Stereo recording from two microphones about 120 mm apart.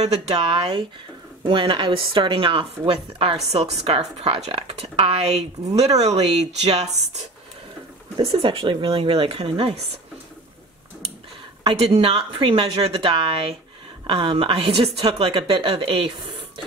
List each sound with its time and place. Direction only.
0.0 s a woman's voice: 55° right (ahead or behind)
8.3 s a woman's voice: 45° right (ahead or behind)
11.6 s a woman's voice: 50° right (ahead or behind)